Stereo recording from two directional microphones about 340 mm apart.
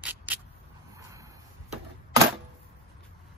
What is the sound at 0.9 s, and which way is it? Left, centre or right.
Vehicle, centre.